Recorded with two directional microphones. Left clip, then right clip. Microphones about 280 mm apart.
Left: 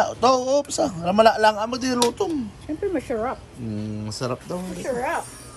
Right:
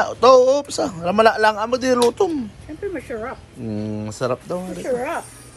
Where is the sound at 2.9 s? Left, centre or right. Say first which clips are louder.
Left 2 dB; left.